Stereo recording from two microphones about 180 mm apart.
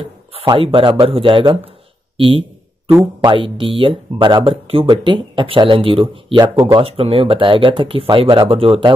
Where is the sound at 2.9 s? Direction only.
15° right (ahead or behind).